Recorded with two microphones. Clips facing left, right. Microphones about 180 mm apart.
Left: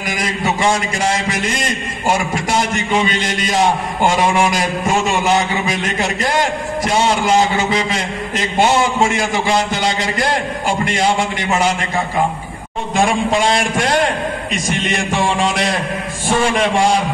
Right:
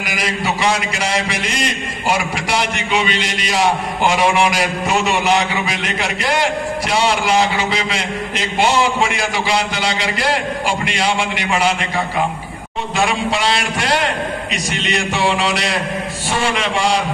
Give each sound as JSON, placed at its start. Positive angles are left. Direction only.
{"t": 0.0, "sound": "a man's voice", "side_deg": 45}
{"t": 12.9, "sound": "a man's voice", "side_deg": 50}